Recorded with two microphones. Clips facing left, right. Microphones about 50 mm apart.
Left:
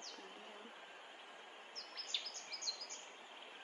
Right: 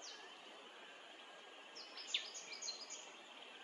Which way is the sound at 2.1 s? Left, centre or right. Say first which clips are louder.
Right 1 dB; right.